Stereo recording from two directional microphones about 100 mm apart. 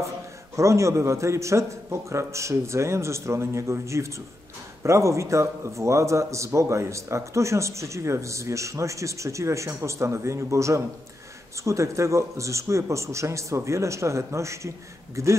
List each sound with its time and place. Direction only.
0.6 s a man's voice: 30° right (ahead or behind)